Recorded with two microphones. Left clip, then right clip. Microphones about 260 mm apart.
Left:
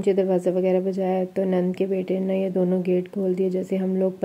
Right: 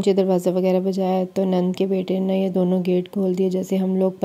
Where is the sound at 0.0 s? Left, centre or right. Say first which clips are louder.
Right 2 dB; right.